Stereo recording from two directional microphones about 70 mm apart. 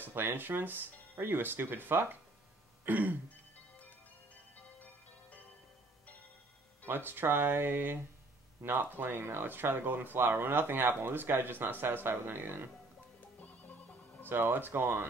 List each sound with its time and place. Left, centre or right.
0.0 s speech: right
2.8 s throat clearing: right
6.9 s speech: right
14.2 s speech: right